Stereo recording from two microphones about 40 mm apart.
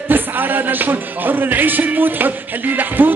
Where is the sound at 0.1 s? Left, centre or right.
Right.